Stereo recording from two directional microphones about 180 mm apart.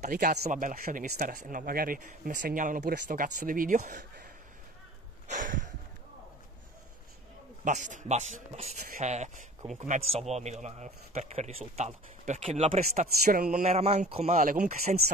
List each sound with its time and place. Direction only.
0.0 s speech: 45° right (ahead or behind)
5.3 s sniff: 45° right (ahead or behind)
7.6 s speech: 45° right (ahead or behind)
13.2 s speech: 60° right (ahead or behind)
13.5 s speech: 40° right (ahead or behind)